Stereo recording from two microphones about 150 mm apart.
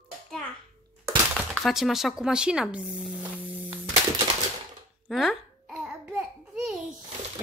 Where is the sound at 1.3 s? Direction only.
Centre (ahead or behind).